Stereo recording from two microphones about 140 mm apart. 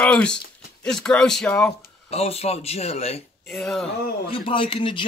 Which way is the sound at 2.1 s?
45° left (ahead or behind).